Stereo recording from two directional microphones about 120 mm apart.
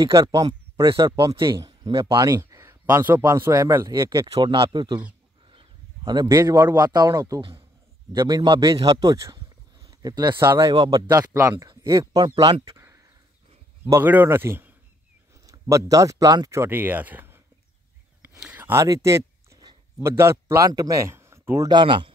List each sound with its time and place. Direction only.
0.0 s speech: 25° right (ahead or behind)
0.8 s speech: 40° right (ahead or behind)
2.3 s a man's voice: 20° right (ahead or behind)
4.3 s speech: 45° right (ahead or behind)
5.5 s a sound: 40° right (ahead or behind)
6.2 s speech: 30° right (ahead or behind)
8.5 s speech: 45° right (ahead or behind)
8.8 s a sound: 35° right (ahead or behind)
10.5 s speech: 35° right (ahead or behind)
11.5 s speech: 40° right (ahead or behind)
13.8 s speech: 20° right (ahead or behind)
15.7 s speech: 25° right (ahead or behind)
18.4 s a sound: 15° right (ahead or behind)
21.6 s speech: 40° right (ahead or behind)